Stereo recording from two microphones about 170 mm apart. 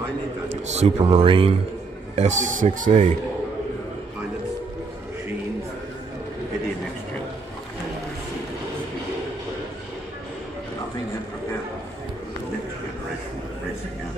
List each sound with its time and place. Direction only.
0.7 s speech: 35° right (ahead or behind)
2.1 s speech: 45° right (ahead or behind)